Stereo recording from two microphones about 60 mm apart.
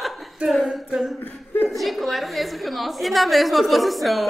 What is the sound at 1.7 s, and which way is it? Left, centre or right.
A woman's voice, centre.